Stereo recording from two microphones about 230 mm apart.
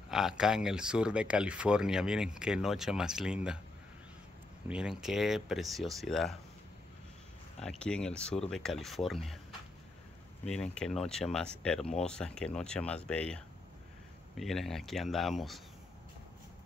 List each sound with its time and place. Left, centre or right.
0.1 s speech: centre
4.6 s speech: centre
7.6 s speech: centre
10.4 s speech: centre